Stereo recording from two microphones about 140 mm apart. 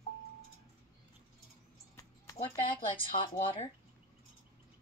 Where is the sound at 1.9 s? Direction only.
25° left (ahead or behind).